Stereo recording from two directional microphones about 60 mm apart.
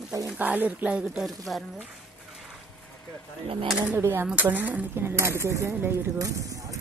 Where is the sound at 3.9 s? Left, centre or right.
Right.